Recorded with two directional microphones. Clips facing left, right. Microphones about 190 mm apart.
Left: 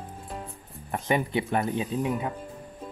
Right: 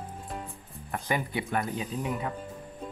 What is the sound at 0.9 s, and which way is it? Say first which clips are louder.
Speech: left 5 dB; 25° left (ahead or behind).